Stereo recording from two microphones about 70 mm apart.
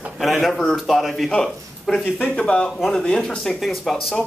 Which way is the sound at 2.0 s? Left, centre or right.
Left.